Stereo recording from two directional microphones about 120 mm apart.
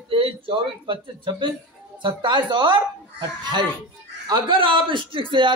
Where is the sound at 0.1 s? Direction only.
50° right (ahead or behind).